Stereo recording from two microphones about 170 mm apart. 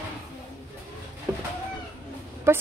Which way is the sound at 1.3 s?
15° right (ahead or behind).